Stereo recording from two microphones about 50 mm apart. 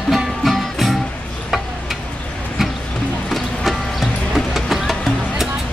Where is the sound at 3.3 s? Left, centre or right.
Centre.